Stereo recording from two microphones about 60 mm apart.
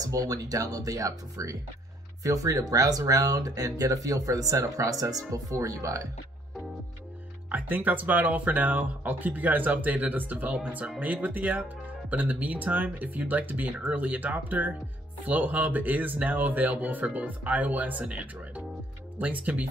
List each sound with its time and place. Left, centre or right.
0.0 s speech: right
2.7 s speech: right
7.5 s speech: right